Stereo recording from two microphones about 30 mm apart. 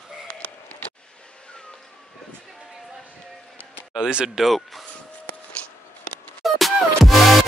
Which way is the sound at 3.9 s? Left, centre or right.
Centre.